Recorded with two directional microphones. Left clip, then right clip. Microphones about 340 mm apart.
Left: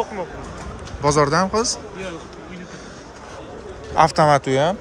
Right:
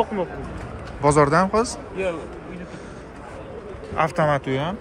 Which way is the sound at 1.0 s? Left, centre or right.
Centre.